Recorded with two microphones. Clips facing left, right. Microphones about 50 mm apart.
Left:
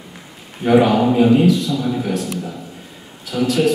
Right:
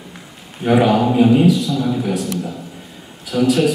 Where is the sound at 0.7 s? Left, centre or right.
Centre.